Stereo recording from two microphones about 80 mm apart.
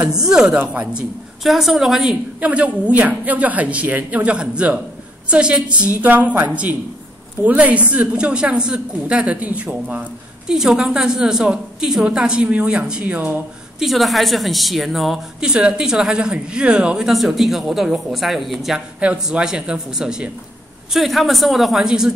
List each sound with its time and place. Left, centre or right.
0.0 s a woman's voice: centre
1.4 s a woman's voice: centre
2.4 s a woman's voice: centre
10.5 s a woman's voice: centre
13.7 s a woman's voice: centre